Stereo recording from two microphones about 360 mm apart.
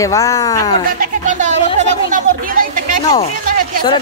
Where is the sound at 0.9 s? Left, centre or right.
Right.